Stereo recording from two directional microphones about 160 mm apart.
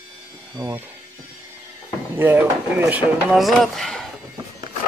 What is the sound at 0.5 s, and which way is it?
Speech, 25° right (ahead or behind).